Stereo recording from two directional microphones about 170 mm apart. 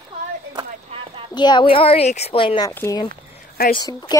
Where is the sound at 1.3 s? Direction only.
25° left (ahead or behind).